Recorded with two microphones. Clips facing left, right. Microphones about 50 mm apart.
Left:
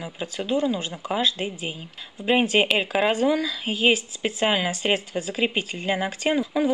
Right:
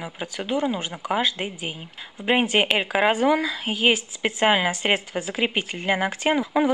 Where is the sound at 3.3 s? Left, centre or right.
Right.